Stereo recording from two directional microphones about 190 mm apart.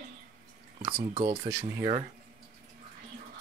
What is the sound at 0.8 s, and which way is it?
Speech, 30° right (ahead or behind).